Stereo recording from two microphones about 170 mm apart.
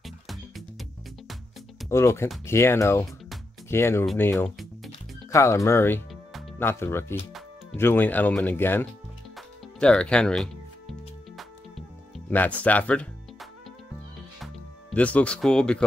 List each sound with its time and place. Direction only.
0.0 s music: centre (ahead or behind)
1.9 s speech: 15° left (ahead or behind)
9.8 s music: 5° left (ahead or behind)
12.3 s speech: 10° left (ahead or behind)
14.4 s music: 5° left (ahead or behind)